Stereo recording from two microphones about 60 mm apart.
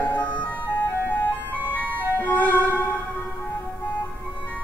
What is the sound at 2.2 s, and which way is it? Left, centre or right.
Music, left.